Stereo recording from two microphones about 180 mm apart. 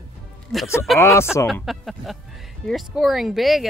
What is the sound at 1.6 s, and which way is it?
Speech, centre (ahead or behind).